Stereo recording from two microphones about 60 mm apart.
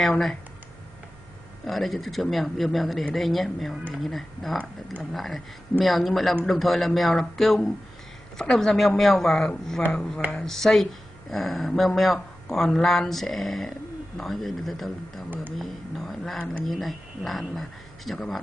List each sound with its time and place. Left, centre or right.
0.0 s speech: centre
1.7 s speech: centre
15.2 s speech: right
15.5 s speech: centre